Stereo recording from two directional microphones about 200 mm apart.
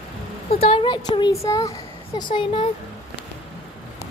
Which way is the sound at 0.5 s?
30° left (ahead or behind).